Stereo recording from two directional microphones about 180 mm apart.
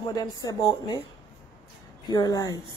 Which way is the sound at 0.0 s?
20° left (ahead or behind).